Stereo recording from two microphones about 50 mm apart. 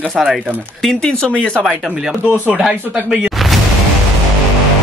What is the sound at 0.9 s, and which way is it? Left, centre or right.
Speech, centre.